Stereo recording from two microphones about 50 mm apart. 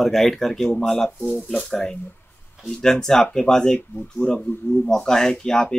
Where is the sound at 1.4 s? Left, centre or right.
Centre.